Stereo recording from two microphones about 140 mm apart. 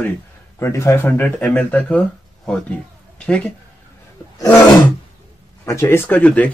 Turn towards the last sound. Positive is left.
turn(degrees=10)  # may be behind; listen again after turning